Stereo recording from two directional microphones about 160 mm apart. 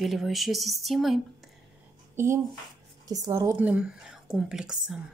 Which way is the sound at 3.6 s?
5° right (ahead or behind).